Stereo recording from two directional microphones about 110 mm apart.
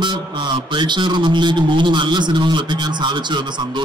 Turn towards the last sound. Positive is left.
turn(degrees=-45)  # may be behind; listen again after turning